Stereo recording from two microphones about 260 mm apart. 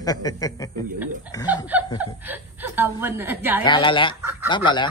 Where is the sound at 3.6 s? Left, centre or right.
Centre.